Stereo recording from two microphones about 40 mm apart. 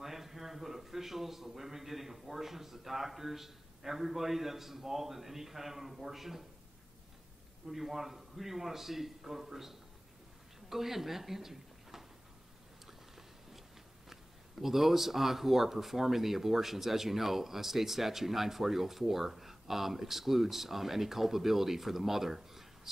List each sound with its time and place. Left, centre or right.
0.0 s speech: centre
7.6 s speech: centre
14.6 s speech: centre